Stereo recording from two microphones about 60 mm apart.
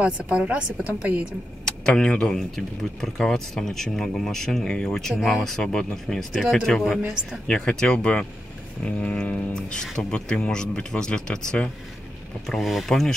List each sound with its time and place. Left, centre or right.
0.0 s speech: centre
1.9 s speech: centre
12.4 s speech: centre